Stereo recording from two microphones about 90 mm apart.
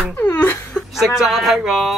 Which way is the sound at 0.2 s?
20° left (ahead or behind).